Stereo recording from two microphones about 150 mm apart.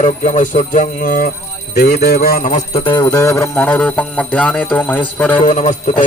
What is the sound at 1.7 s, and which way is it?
Speech, 90° left.